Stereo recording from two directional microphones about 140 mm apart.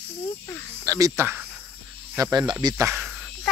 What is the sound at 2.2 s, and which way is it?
Speech, 30° right (ahead or behind).